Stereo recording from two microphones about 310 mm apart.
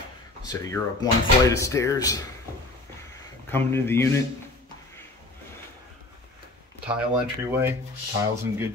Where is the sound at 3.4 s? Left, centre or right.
Centre.